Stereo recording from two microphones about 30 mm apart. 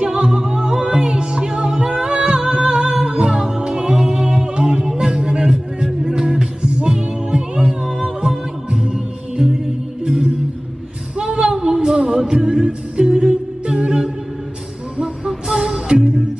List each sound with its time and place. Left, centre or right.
0.0 s music: right
11.1 s a sound: right
11.8 s music: right
15.2 s music: right